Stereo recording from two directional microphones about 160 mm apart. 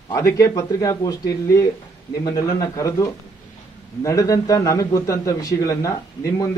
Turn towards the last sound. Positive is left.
turn(degrees=20)  # may be behind; listen again after turning